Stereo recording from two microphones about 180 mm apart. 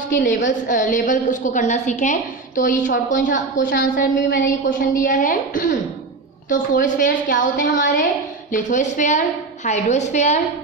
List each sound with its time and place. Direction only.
0.5 s a woman's voice: 45° left (ahead or behind)